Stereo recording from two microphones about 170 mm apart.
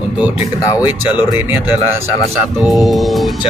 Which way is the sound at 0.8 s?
10° right (ahead or behind).